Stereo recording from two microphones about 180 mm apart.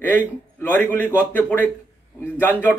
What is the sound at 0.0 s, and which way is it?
A man's voice, 10° left (ahead or behind).